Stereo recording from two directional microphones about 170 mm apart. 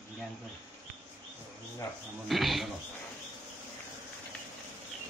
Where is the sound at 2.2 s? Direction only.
Centre (ahead or behind).